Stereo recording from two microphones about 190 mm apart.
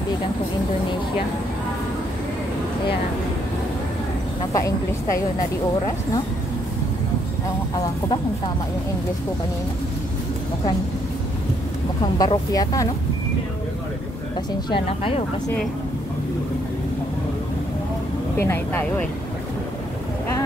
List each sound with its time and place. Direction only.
4.5 s speech: 15° left (ahead or behind)
12.0 s speech: 20° left (ahead or behind)
14.7 s speech: 30° left (ahead or behind)
18.4 s speech: 10° left (ahead or behind)